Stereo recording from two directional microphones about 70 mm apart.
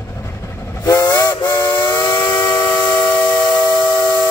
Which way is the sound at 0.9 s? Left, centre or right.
Left.